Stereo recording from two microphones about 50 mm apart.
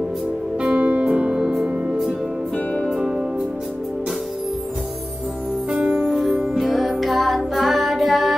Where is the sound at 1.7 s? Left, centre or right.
Right.